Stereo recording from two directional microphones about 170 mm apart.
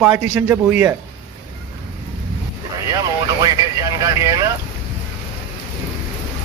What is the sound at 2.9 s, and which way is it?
Speech, 20° right (ahead or behind).